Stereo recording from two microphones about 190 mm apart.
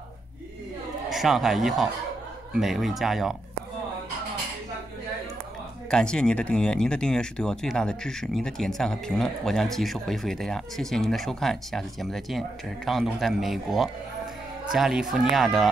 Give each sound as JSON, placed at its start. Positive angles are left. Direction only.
{"t": 1.1, "sound": "speech", "side_deg": 0}
{"t": 5.9, "sound": "speech", "side_deg": 5}